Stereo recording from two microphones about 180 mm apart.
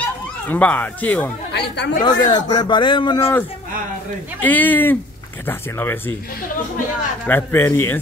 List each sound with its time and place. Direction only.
0.5 s speech: 10° left (ahead or behind)
1.5 s speech: 70° left (ahead or behind)
2.0 s a man's voice: 25° left (ahead or behind)
3.2 s speech: 15° left (ahead or behind)
7.2 s speech: 10° left (ahead or behind)